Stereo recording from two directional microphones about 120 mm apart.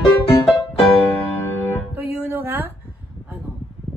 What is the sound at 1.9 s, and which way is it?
Music, 15° right (ahead or behind).